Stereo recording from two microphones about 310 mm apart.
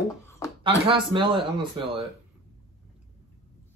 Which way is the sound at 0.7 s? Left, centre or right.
Centre.